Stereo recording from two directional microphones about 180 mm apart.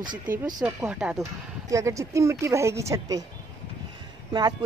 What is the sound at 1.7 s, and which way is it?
Speech, 15° right (ahead or behind).